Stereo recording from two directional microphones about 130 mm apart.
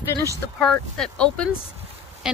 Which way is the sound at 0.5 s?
5° left (ahead or behind).